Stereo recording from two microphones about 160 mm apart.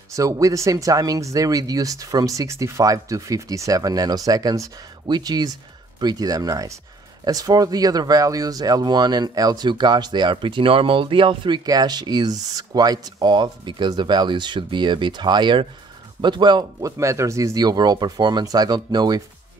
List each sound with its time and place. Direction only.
0.1 s speech: 20° right (ahead or behind)